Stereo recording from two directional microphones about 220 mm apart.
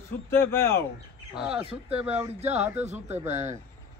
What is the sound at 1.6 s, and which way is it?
Speech, 25° right (ahead or behind).